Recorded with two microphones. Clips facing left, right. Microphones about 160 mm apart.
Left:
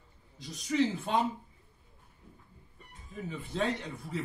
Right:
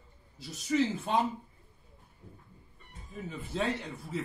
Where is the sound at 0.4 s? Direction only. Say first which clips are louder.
Even; 5° right (ahead or behind).